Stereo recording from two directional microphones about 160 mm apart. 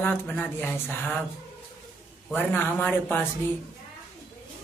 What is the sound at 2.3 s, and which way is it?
Speech, 10° left (ahead or behind).